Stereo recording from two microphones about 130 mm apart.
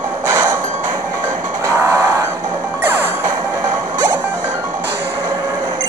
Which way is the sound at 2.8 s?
15° right (ahead or behind).